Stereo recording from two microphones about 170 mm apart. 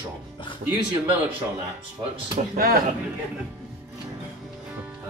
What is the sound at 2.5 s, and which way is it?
Speech, 60° right (ahead or behind).